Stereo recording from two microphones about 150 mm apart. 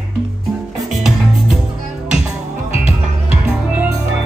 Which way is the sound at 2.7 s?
45° left (ahead or behind).